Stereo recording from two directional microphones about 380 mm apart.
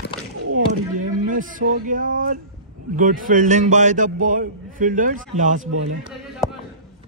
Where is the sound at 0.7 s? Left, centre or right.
Right.